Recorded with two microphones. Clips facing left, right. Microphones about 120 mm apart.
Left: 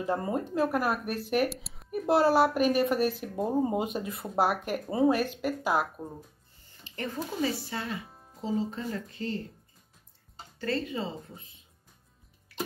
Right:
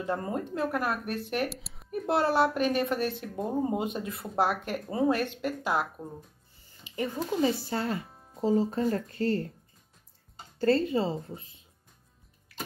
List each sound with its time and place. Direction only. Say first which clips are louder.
0.0 s speech: left 2 dB; 10° left (ahead or behind)
6.8 s a sound: right 4 dB; 10° right (ahead or behind)
7.7 s speech: right 5 dB; 40° right (ahead or behind)
8.1 s music: even; centre (ahead or behind)
8.4 s speech: right 6 dB; 45° right (ahead or behind)
10.6 s speech: right 7 dB; 35° right (ahead or behind)